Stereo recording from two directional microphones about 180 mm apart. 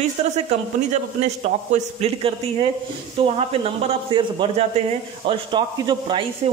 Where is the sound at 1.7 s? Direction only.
35° right (ahead or behind).